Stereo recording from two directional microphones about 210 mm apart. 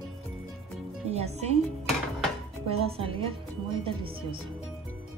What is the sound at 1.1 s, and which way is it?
Speech, 30° right (ahead or behind).